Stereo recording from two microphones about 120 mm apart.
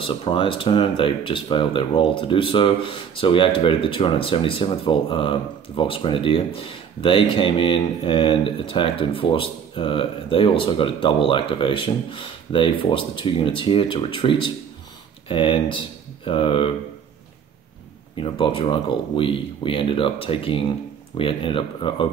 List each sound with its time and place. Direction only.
0.0 s speech: 45° left (ahead or behind)
18.1 s speech: 45° left (ahead or behind)